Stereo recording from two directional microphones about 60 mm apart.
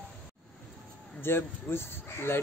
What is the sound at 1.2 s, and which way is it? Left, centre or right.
Speech, left.